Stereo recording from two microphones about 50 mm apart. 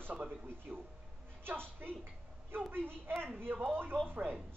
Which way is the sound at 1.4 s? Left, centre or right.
Right.